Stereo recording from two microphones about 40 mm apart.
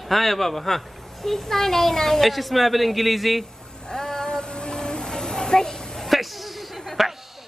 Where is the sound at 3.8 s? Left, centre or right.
Centre.